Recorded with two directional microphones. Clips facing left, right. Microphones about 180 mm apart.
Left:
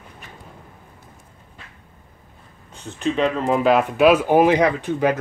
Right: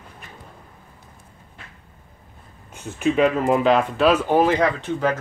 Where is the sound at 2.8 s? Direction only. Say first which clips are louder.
Right 2 dB; 10° right (ahead or behind); by 5.2 s 15° left (ahead or behind).